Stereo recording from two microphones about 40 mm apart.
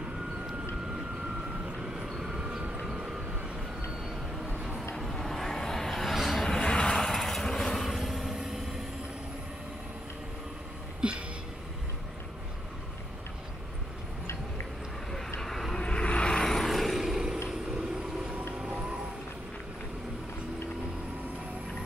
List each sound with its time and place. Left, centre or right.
1.8 s vehicle: centre
2.2 s train: right
4.9 s vehicle: centre
6.4 s vehicle: centre
7.0 s vehicle: centre
7.8 s vehicle: centre
11.0 s a sound: right
15.4 s vehicle: centre
15.8 s vehicle: left
16.3 s vehicle: centre
17.0 s vehicle: centre